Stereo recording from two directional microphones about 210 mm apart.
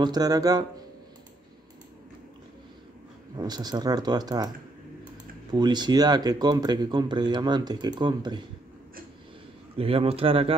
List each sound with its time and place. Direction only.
0.0 s speech: 20° right (ahead or behind)
3.3 s speech: 20° right (ahead or behind)
5.5 s speech: 20° right (ahead or behind)
9.8 s speech: 25° right (ahead or behind)